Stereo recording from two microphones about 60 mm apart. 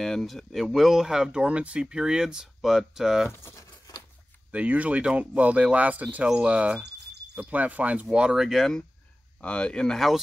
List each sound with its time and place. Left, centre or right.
0.0 s speech: centre
3.3 s speech: left
4.5 s speech: right
8.1 s speech: centre
9.4 s speech: centre
9.9 s speech: centre